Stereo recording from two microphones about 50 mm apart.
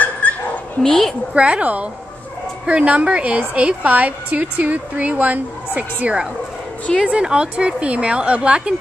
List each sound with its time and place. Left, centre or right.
0.2 s dog: left
0.8 s a woman's voice: centre
1.3 s a woman's voice: right